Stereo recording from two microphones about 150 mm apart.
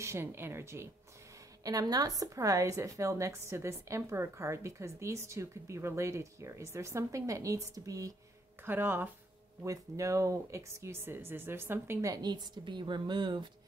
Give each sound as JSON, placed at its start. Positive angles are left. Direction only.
{"t": 0.0, "sound": "a woman's voice", "side_deg": -15}